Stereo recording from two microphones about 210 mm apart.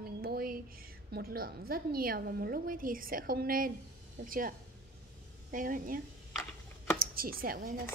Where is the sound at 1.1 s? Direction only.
45° right (ahead or behind).